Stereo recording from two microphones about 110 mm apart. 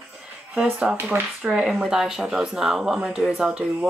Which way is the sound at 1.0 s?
20° right (ahead or behind).